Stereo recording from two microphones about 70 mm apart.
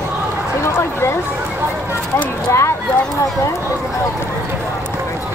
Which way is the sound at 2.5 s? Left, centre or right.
Left.